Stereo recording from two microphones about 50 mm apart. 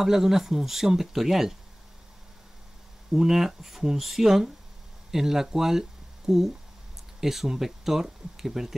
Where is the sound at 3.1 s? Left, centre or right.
Centre.